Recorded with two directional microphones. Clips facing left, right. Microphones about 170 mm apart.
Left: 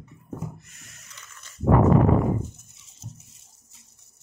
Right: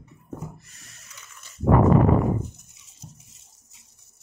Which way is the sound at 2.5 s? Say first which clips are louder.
Even; 15° right (ahead or behind).